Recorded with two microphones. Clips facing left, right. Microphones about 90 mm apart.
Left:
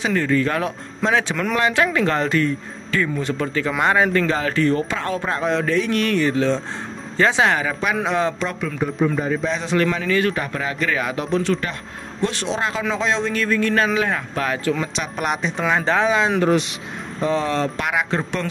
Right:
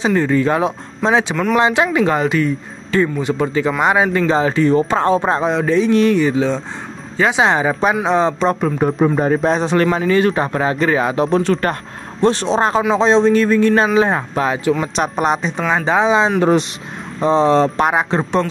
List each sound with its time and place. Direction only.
0.0 s speech: 20° right (ahead or behind)
1.3 s speech: 5° right (ahead or behind)
1.6 s speech: 20° right (ahead or behind)
4.8 s a man's voice: 30° right (ahead or behind)
8.5 s a man's voice: 45° right (ahead or behind)